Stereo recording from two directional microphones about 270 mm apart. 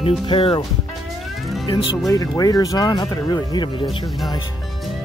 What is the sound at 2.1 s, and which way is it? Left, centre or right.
Speech, centre.